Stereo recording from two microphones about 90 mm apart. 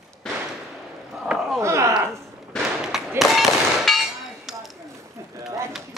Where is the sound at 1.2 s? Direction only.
5° right (ahead or behind).